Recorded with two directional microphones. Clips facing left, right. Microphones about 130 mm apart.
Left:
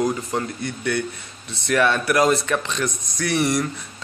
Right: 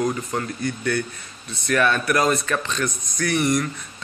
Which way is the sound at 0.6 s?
25° left (ahead or behind).